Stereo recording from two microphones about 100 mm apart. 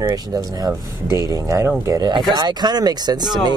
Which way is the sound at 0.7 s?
30° right (ahead or behind).